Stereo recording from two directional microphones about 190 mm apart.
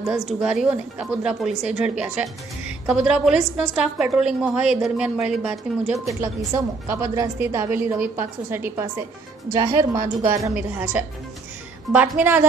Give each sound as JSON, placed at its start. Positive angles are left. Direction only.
{"t": 0.0, "sound": "a woman's voice", "side_deg": -5}
{"t": 6.2, "sound": "a woman's voice", "side_deg": -15}